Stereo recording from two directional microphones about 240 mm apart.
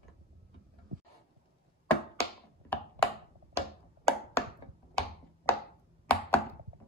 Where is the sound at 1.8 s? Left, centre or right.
Centre.